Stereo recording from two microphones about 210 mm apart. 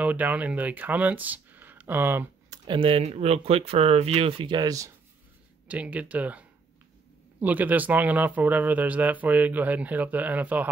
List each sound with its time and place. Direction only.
0.0 s speech: 5° right (ahead or behind)
2.6 s speech: 25° right (ahead or behind); by 10.7 s 5° right (ahead or behind)